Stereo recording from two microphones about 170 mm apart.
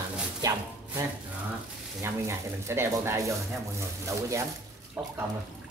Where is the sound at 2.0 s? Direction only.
15° right (ahead or behind).